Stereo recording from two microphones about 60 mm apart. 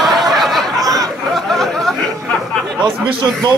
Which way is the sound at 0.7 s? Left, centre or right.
Right.